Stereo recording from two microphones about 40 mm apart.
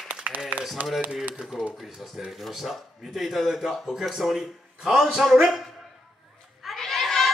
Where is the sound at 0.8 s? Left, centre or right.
Right.